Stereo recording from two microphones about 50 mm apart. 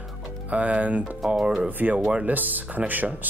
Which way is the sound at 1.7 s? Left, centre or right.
Right.